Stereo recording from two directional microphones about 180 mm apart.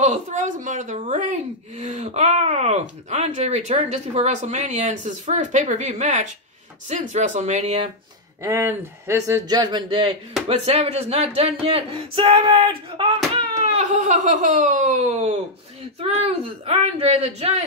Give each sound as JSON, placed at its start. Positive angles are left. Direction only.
{"t": 0.0, "sound": "speech", "side_deg": -40}
{"t": 8.4, "sound": "speech", "side_deg": -15}